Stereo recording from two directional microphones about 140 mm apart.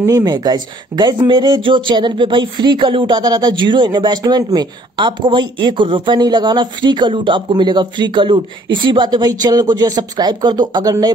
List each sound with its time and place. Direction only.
0.0 s speech: 25° right (ahead or behind)